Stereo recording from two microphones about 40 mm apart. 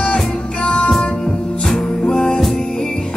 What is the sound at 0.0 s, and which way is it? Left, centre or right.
Music, left.